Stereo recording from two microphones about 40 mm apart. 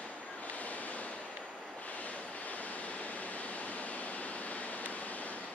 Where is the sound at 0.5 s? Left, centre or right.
Left.